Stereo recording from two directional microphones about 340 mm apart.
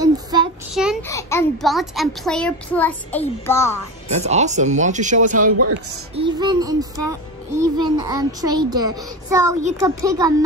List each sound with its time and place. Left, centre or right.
0.0 s child singing: centre
0.7 s a child's voice: centre
4.1 s a child's voice: centre